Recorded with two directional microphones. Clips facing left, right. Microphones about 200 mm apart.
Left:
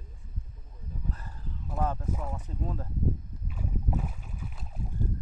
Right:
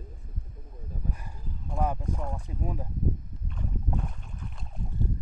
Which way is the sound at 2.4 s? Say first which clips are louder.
Right 1 dB; 10° right (ahead or behind).